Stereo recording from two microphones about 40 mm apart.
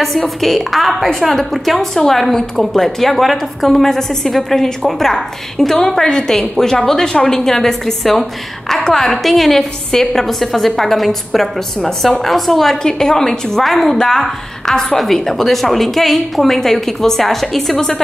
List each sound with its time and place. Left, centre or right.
0.0 s a woman's voice: centre
6.0 s a woman's voice: centre
12.8 s a woman's voice: centre
13.6 s a woman's voice: centre